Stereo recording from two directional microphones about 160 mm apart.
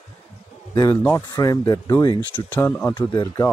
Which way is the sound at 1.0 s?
20° left (ahead or behind).